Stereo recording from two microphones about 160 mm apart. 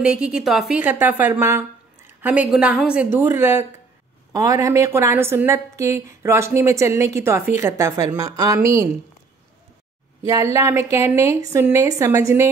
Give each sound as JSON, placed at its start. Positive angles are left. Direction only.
{"t": 0.0, "sound": "a woman's voice", "side_deg": -5}
{"t": 10.4, "sound": "a woman's voice", "side_deg": -20}